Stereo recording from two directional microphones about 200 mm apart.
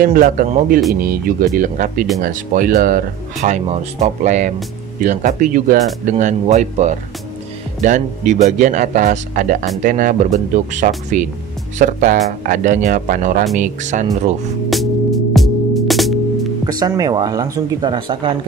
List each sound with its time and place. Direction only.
0.0 s speech: 45° right (ahead or behind)
14.7 s music: centre (ahead or behind)
16.6 s speech: 20° right (ahead or behind)